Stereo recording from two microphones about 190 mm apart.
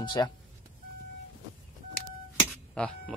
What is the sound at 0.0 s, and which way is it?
Speech, 25° left (ahead or behind).